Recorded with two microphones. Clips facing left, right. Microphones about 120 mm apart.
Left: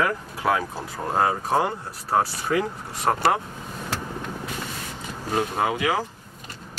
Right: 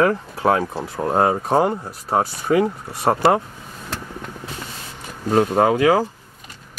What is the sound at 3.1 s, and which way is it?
Speech, 30° right (ahead or behind).